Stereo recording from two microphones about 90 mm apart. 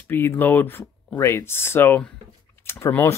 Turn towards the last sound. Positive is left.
turn(degrees=30)  # may be behind; listen again after turning